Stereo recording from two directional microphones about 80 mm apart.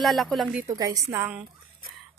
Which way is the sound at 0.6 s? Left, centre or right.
Right.